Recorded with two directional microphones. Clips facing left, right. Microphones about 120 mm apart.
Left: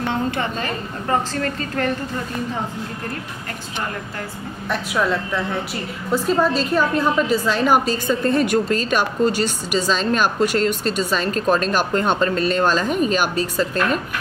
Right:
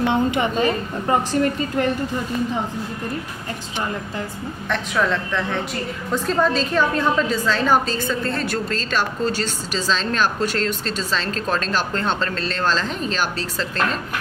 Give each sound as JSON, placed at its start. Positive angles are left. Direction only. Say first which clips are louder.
{"t": 0.0, "sound": "a woman's voice", "louder": "right 3 dB", "side_deg": -15}
{"t": 4.6, "sound": "a woman's voice", "louder": "left 1 dB", "side_deg": 10}